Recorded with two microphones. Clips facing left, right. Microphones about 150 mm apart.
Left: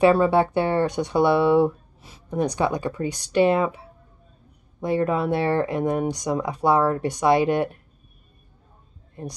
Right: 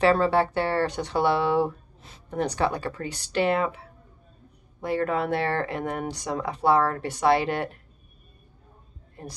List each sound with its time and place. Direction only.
0.0 s speech: 15° left (ahead or behind)